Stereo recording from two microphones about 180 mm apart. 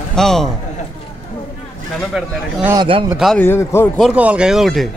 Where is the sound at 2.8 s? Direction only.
30° right (ahead or behind).